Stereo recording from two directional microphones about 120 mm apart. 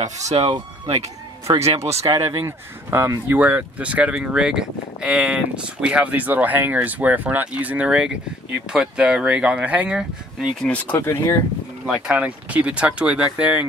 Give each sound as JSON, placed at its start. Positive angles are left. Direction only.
{"t": 0.0, "sound": "speech", "side_deg": -70}
{"t": 1.5, "sound": "speech", "side_deg": -45}
{"t": 2.0, "sound": "speech", "side_deg": -25}
{"t": 10.6, "sound": "speech", "side_deg": 10}
{"t": 11.0, "sound": "speech", "side_deg": 25}
{"t": 11.8, "sound": "speech", "side_deg": -10}